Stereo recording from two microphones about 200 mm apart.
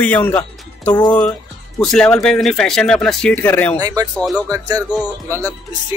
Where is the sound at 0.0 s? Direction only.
10° left (ahead or behind).